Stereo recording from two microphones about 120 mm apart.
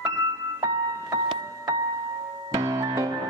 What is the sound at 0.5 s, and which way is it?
Music, 35° right (ahead or behind).